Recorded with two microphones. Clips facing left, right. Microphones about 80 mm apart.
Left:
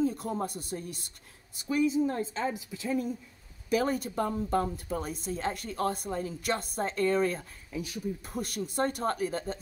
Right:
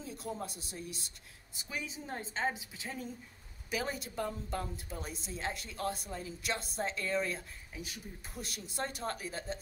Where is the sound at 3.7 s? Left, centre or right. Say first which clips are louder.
Left 9 dB; left.